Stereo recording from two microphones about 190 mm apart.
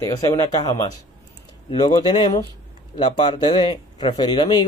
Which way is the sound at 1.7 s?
20° left (ahead or behind).